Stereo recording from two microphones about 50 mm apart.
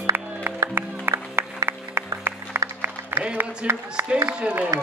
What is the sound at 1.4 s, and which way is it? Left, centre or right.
Applause, right.